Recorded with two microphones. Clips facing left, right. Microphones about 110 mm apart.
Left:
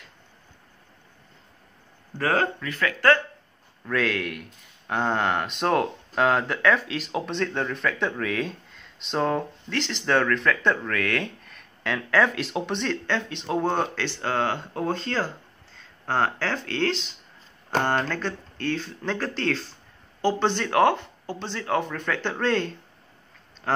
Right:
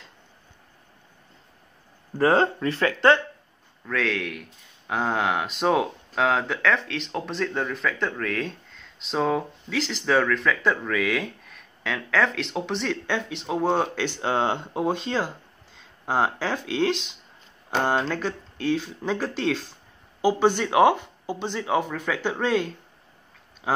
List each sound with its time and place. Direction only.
2.1 s speech: 25° right (ahead or behind)
3.8 s speech: centre (ahead or behind)